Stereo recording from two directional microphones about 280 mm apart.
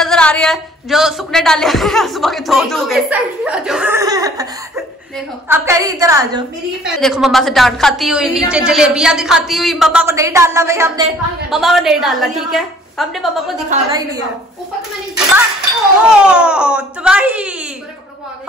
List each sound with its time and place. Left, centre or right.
0.0 s a woman's voice: centre
7.0 s speech: centre
13.7 s a woman's voice: centre
16.2 s speech: centre